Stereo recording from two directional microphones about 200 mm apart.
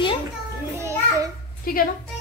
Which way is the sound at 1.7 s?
45° left (ahead or behind).